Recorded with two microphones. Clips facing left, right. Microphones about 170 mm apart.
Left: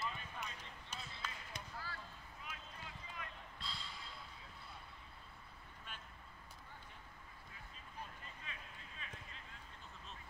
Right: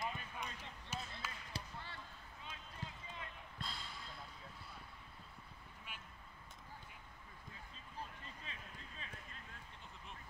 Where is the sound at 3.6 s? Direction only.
50° right (ahead or behind).